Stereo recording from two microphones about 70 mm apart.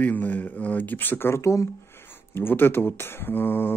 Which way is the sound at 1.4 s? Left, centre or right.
Left.